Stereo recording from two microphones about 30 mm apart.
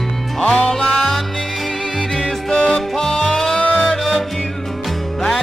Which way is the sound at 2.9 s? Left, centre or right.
Centre.